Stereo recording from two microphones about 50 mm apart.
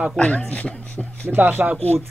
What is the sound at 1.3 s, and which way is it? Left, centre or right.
Speech, right.